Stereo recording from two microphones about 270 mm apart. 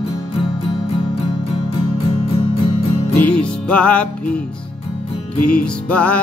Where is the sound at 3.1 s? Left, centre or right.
Centre.